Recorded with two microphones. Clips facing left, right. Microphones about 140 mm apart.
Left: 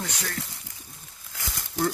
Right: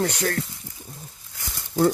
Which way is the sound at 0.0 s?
65° right (ahead or behind).